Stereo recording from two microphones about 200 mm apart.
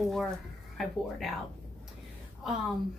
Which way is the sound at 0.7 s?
Centre (ahead or behind).